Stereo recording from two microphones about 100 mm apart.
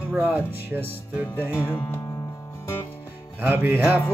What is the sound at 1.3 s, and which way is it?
Music, 25° left (ahead or behind).